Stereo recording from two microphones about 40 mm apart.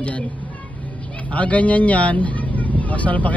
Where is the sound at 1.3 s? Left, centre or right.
Left.